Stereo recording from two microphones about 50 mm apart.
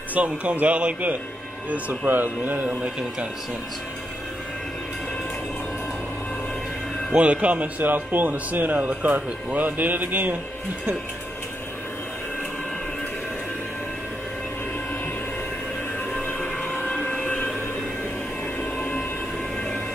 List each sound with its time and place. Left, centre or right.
0.1 s speech: right
1.7 s speech: right
2.8 s speech: right
7.2 s speech: right
16.1 s train: left
18.8 s train: left